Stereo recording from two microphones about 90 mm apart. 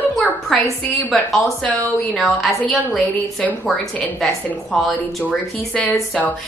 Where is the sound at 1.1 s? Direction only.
Centre (ahead or behind).